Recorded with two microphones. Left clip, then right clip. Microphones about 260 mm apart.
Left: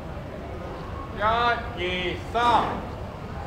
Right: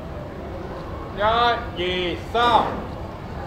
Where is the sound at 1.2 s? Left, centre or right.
Right.